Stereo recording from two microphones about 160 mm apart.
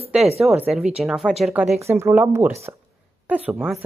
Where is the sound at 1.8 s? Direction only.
15° right (ahead or behind).